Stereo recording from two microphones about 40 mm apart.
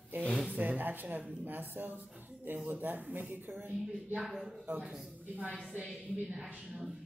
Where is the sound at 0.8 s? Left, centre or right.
Right.